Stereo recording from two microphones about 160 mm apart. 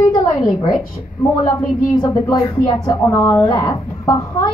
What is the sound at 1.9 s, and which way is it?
A woman's voice, 25° left (ahead or behind).